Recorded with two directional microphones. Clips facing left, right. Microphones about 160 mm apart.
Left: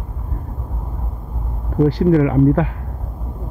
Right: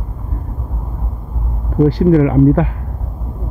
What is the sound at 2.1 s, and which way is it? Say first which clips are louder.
Speech: right 3 dB; 30° right (ahead or behind).